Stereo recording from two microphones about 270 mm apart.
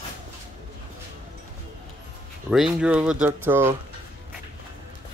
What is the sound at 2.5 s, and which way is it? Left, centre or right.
Speech, centre.